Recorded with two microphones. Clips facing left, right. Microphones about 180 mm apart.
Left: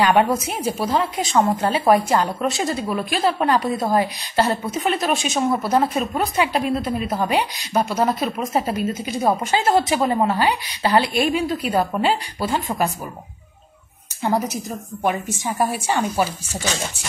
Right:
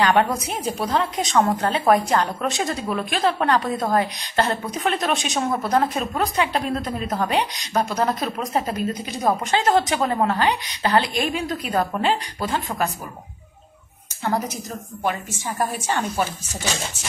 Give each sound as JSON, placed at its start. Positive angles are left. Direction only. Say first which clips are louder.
{"t": 0.0, "sound": "a woman's voice", "louder": "left 2 dB", "side_deg": 15}
{"t": 0.7, "sound": "a woman's voice", "louder": "even", "side_deg": 0}
{"t": 14.2, "sound": "a woman's voice", "louder": "left 3 dB", "side_deg": 10}